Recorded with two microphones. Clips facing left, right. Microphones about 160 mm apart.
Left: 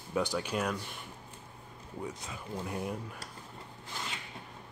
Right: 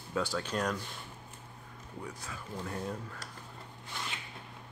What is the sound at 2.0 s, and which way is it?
Speech, 20° left (ahead or behind).